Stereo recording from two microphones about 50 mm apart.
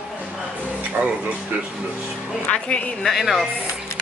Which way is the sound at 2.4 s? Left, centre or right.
Left.